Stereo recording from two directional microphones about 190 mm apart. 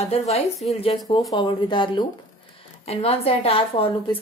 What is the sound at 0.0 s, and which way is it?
Speech, 35° left (ahead or behind).